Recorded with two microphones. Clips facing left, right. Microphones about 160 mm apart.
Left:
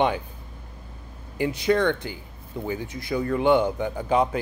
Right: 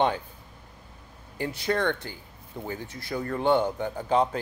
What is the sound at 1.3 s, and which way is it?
A man's voice, 15° left (ahead or behind).